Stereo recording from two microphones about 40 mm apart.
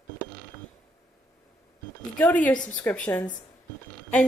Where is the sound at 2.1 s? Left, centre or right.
Left.